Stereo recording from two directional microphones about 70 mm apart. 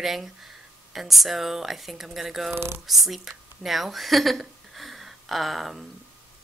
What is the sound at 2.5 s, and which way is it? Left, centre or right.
Speech, right.